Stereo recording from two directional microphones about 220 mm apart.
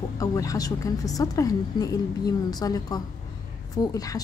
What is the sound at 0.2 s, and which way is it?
A woman's voice, 15° left (ahead or behind).